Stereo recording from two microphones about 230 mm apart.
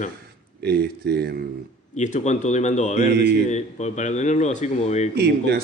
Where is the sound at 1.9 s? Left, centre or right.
Left.